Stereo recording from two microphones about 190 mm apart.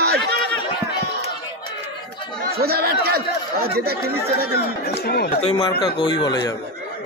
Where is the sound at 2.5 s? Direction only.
55° right (ahead or behind).